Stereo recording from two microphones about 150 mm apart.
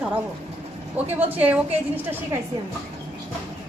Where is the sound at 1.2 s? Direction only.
10° right (ahead or behind).